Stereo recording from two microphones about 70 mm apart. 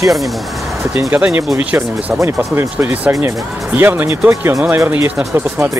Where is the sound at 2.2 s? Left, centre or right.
Right.